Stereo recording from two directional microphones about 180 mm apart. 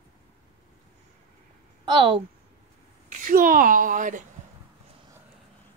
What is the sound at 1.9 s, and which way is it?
Speech, 25° right (ahead or behind).